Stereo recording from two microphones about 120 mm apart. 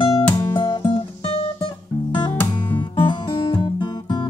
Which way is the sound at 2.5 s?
40° left (ahead or behind).